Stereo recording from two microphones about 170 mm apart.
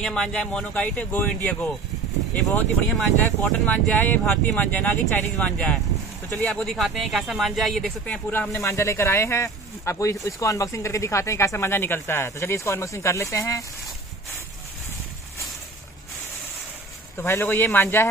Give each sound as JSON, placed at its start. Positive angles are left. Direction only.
{"t": 0.0, "sound": "speech", "side_deg": 5}
{"t": 17.2, "sound": "speech", "side_deg": 10}